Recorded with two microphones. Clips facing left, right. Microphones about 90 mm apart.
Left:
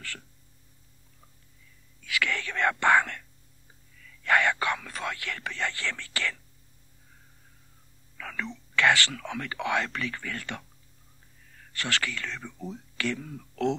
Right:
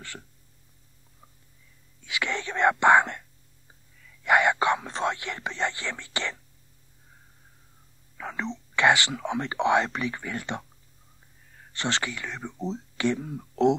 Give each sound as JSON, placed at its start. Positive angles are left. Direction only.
{"t": 2.0, "sound": "speech", "side_deg": -20}
{"t": 4.2, "sound": "whispering", "side_deg": -20}
{"t": 8.2, "sound": "speech", "side_deg": -20}
{"t": 11.7, "sound": "speech", "side_deg": -20}